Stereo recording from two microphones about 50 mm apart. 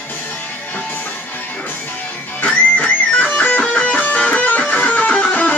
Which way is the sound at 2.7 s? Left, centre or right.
Left.